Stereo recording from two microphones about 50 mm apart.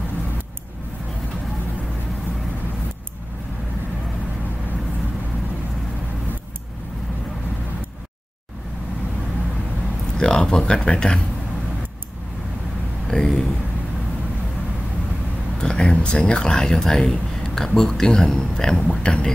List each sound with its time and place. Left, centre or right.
10.1 s speech: centre
13.1 s speech: centre
15.6 s speech: centre